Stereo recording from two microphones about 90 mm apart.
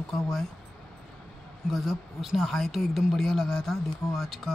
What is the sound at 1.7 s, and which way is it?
Speech, centre (ahead or behind).